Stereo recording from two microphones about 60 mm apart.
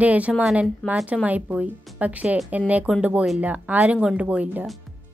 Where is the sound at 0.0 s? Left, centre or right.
Right.